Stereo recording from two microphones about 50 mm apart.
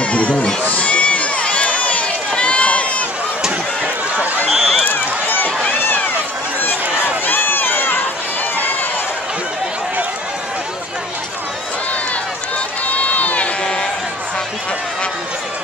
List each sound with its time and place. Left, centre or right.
0.0 s speech: left
0.7 s run: left
4.5 s run: centre
4.8 s run: left
7.2 s run: left
12.8 s run: left